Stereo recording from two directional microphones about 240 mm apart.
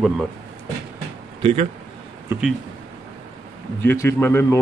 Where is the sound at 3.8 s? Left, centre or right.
Centre.